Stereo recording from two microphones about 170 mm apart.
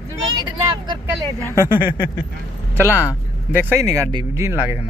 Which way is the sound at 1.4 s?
20° left (ahead or behind).